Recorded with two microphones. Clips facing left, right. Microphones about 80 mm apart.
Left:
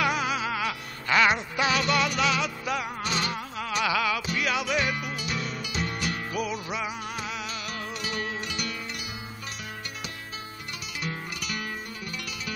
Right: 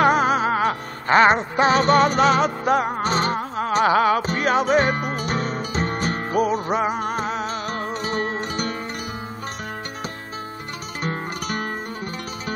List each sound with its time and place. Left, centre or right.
0.0 s music: right
11.0 s music: right